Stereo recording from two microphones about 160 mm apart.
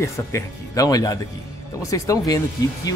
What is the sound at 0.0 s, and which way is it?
Speech, 20° left (ahead or behind).